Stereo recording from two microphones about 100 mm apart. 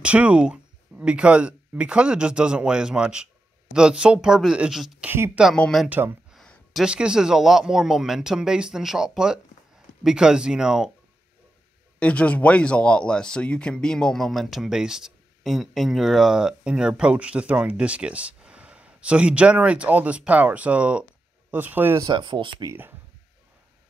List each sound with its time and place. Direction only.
0.0 s speech: 10° right (ahead or behind)
5.0 s speech: 20° right (ahead or behind)
5.6 s speech: 5° left (ahead or behind)
5.9 s speech: 20° right (ahead or behind)
6.3 s a sound: 5° left (ahead or behind)
6.8 s speech: 10° right (ahead or behind)
12.0 s speech: 15° left (ahead or behind); by 21.9 s 20° right (ahead or behind)
22.1 s speech: 55° right (ahead or behind)
22.7 s speech: 20° right (ahead or behind)